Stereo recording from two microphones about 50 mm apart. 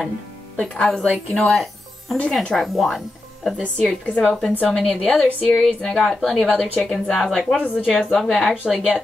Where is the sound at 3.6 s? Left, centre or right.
Left.